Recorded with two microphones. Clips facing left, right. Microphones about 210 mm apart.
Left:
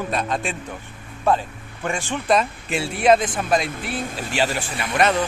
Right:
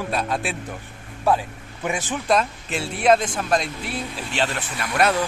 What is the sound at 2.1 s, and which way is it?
Speech, centre (ahead or behind).